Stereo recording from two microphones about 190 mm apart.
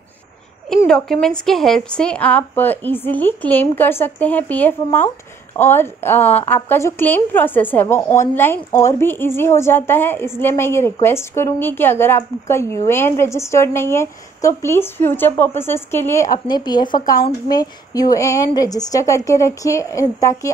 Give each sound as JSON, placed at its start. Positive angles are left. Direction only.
{"t": 0.8, "sound": "a woman's voice", "side_deg": 5}